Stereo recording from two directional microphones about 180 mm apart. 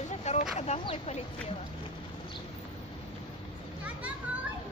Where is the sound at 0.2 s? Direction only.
40° left (ahead or behind).